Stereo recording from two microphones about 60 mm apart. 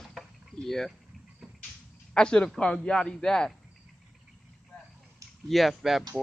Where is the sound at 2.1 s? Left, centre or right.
Centre.